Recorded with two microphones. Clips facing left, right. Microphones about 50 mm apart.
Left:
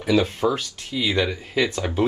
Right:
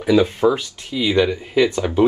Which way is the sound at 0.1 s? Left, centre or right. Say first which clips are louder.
Right 5 dB; right.